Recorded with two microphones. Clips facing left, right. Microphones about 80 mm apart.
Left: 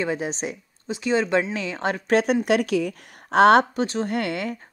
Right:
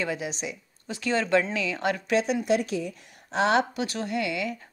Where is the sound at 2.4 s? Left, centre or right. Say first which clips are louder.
Left 4 dB; left.